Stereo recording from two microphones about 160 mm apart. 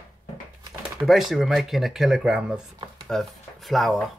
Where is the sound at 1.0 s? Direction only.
Centre (ahead or behind).